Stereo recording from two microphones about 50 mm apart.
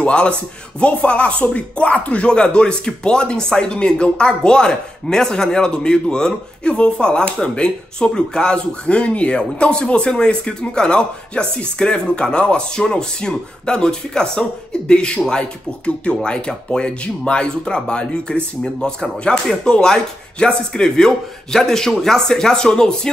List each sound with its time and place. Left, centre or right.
0.0 s speech: left